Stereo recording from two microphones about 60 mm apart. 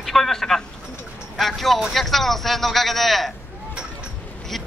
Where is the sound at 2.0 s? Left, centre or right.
Centre.